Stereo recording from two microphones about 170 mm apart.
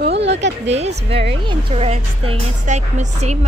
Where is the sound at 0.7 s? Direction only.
40° right (ahead or behind).